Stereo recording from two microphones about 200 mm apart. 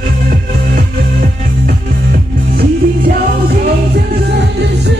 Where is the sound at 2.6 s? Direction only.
50° right (ahead or behind).